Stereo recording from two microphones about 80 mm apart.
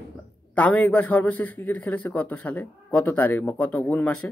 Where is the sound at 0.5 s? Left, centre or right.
Centre.